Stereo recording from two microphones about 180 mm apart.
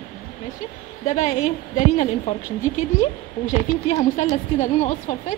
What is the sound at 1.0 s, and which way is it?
A woman's voice, 40° left (ahead or behind).